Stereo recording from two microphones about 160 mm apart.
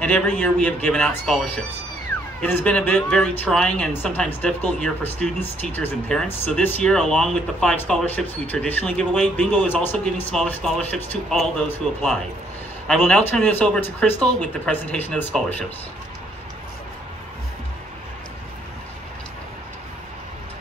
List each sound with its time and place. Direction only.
0.0 s speech: 10° left (ahead or behind)